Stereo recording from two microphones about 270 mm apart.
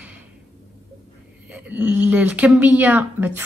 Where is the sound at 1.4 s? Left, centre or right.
Centre.